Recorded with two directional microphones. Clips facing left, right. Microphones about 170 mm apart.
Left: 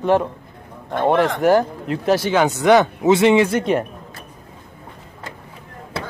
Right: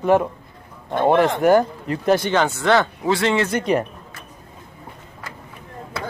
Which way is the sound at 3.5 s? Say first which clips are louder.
Left 1 dB; centre (ahead or behind).